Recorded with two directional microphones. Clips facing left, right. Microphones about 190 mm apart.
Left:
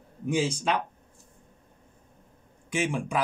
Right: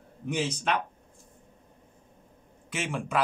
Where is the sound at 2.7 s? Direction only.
15° left (ahead or behind).